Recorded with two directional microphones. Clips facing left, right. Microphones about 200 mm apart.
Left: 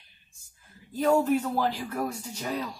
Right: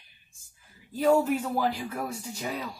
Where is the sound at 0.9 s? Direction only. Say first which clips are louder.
Even; 10° right (ahead or behind).